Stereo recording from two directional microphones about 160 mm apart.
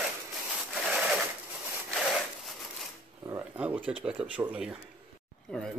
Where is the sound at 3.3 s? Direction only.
15° right (ahead or behind).